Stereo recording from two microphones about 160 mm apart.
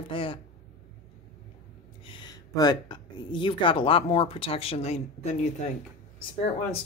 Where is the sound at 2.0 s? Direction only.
30° left (ahead or behind).